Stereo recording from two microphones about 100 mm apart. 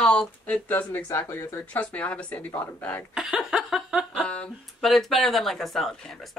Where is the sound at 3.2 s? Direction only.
5° right (ahead or behind).